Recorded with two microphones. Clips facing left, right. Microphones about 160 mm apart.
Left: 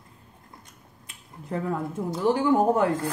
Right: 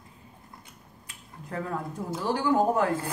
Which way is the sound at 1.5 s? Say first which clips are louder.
Left 4 dB; 20° left (ahead or behind).